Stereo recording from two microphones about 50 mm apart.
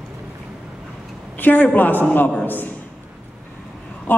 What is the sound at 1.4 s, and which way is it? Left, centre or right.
A woman's voice, left.